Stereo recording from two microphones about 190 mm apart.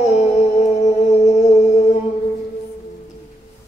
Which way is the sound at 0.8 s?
35° left (ahead or behind).